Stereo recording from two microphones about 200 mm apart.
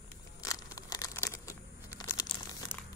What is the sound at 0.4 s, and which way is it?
Crumpling, 15° left (ahead or behind).